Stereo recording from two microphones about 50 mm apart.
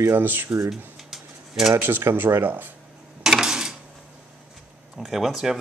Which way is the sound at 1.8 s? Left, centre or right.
Right.